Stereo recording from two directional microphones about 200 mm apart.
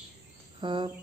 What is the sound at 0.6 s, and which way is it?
Bird, 25° right (ahead or behind).